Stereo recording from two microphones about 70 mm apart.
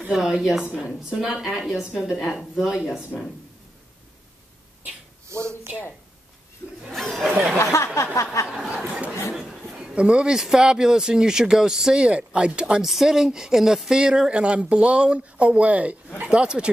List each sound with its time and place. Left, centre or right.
0.1 s speech: centre
5.3 s a sound: right
6.9 s chatter: centre
7.5 s a sound: left
8.5 s chatter: centre
9.3 s a man's voice: centre